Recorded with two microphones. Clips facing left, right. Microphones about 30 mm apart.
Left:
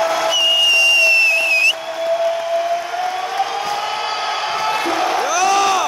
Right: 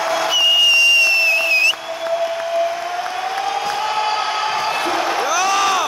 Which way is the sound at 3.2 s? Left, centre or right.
Centre.